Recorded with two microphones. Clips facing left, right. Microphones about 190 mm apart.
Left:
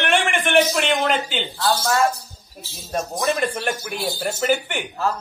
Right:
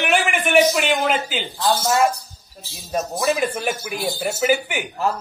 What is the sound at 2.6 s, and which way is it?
Speech, 5° right (ahead or behind).